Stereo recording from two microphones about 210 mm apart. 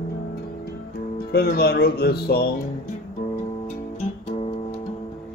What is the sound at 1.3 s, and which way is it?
Speech, 50° left (ahead or behind).